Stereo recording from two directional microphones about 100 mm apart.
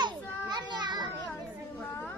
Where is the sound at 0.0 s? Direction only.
45° right (ahead or behind).